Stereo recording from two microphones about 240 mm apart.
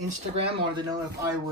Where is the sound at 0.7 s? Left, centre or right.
Centre.